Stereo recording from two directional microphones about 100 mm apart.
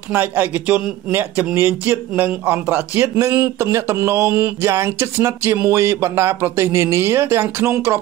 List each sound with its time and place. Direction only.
0.1 s a man's voice: 20° right (ahead or behind)